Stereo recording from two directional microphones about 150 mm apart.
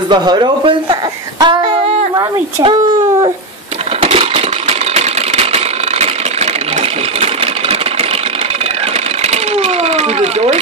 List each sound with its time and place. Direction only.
0.1 s speech: 30° right (ahead or behind)
1.4 s female singing: 30° right (ahead or behind)
4.0 s engine: 40° right (ahead or behind)
9.3 s sewing machine: 45° right (ahead or behind)